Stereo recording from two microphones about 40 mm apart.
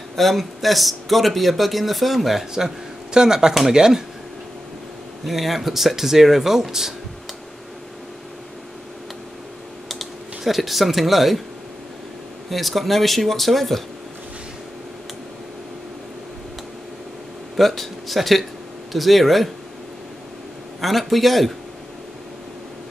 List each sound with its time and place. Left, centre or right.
0.1 s speech: centre
2.5 s speech: centre
5.2 s speech: centre
9.8 s speech: centre
12.4 s speech: centre
17.6 s speech: centre
20.8 s speech: centre